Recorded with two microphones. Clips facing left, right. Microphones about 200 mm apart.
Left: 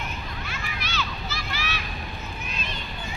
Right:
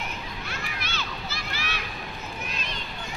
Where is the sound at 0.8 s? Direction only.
55° right (ahead or behind).